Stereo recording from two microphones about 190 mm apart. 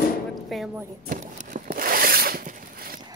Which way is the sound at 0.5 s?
Centre (ahead or behind).